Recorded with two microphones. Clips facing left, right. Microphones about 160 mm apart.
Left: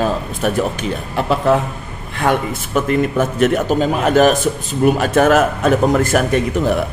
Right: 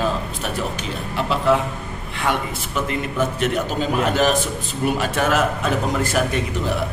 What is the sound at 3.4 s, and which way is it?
A man's voice, 50° left (ahead or behind).